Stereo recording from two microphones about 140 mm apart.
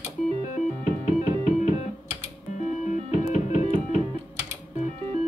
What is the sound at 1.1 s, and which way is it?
Music, 55° left (ahead or behind).